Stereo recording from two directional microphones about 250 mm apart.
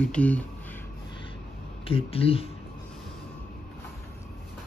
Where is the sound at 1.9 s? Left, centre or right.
Left.